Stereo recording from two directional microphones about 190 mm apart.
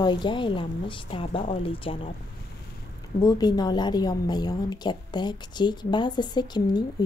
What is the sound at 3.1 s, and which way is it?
A woman's voice, 20° left (ahead or behind).